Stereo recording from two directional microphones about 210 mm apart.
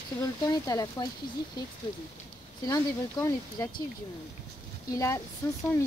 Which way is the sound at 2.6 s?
15° left (ahead or behind).